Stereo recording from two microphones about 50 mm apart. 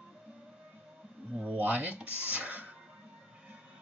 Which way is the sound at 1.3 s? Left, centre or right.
Right.